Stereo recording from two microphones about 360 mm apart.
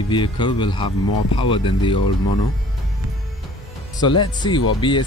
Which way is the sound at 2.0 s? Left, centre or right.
Left.